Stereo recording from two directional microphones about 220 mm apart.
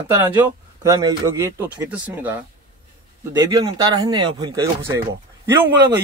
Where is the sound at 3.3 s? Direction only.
20° right (ahead or behind).